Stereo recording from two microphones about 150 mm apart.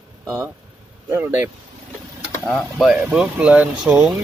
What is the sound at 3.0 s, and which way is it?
Speech, 10° right (ahead or behind).